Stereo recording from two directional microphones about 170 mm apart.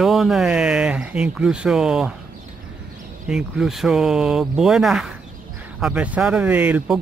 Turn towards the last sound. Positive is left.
turn(degrees=-10)  # may be behind; listen again after turning